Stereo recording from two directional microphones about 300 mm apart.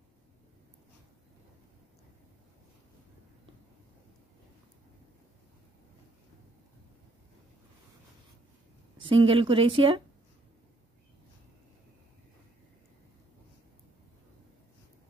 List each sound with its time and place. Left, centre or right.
9.0 s speech: centre